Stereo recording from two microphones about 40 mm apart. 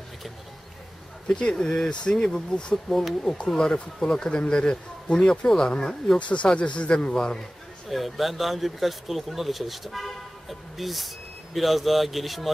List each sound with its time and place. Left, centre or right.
1.3 s speech: left
6.1 s speech: left
7.9 s speech: centre